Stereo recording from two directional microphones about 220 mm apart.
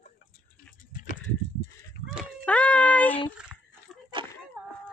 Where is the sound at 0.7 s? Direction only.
35° left (ahead or behind).